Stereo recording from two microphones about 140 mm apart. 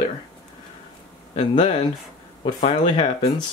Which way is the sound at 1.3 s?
55° left (ahead or behind).